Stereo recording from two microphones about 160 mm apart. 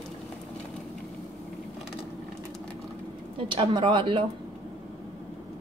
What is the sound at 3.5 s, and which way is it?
Speech, 30° right (ahead or behind).